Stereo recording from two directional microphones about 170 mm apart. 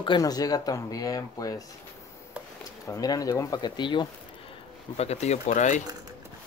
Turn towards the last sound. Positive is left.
turn(degrees=45)  # may be behind; listen again after turning